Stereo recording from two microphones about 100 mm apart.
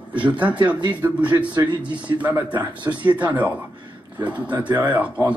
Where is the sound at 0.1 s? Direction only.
15° right (ahead or behind).